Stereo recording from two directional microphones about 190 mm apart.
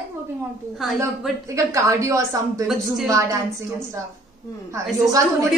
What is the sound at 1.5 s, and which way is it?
Speech, 15° right (ahead or behind).